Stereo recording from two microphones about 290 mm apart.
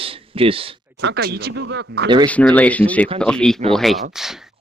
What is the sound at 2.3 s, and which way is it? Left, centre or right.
Speech, centre.